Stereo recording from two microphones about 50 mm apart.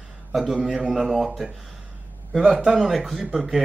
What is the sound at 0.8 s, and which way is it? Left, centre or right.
Speech, centre.